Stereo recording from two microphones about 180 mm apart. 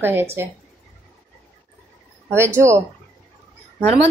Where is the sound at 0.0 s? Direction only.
15° right (ahead or behind).